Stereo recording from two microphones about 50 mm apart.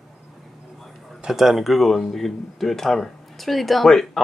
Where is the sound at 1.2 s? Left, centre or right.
Centre.